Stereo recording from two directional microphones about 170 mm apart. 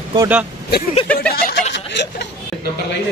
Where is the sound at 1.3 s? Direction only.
65° left (ahead or behind).